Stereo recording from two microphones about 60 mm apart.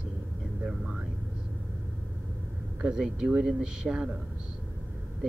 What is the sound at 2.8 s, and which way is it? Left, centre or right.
Speech, centre.